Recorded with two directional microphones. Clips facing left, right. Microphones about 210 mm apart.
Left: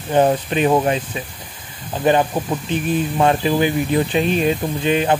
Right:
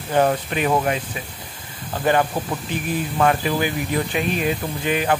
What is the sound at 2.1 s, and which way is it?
Speech, 20° left (ahead or behind).